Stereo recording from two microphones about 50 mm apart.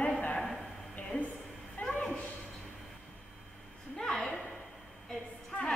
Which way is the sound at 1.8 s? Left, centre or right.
Left.